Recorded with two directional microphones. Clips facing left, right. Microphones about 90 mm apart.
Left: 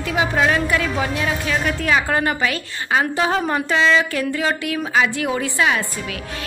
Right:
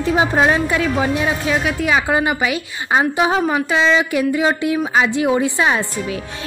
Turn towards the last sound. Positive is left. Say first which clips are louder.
# right 3 dB
turn(degrees=-20)  # may be behind; listen again after turning